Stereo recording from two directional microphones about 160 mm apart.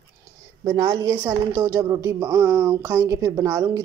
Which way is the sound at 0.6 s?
25° right (ahead or behind).